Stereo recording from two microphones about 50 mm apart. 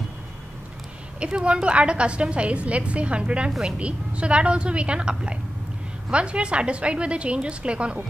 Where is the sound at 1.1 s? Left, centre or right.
Right.